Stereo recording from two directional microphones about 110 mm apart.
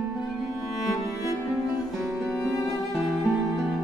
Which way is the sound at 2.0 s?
25° right (ahead or behind).